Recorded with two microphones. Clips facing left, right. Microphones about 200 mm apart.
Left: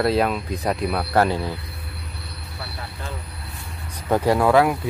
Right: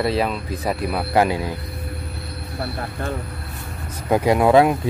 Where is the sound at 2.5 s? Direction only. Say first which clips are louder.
Right 9 dB; 50° right (ahead or behind).